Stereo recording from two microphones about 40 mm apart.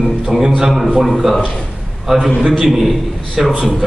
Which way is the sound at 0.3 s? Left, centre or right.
Centre.